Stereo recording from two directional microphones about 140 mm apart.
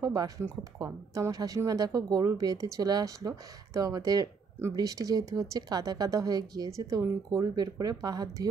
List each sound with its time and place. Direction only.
0.0 s speech: 25° right (ahead or behind)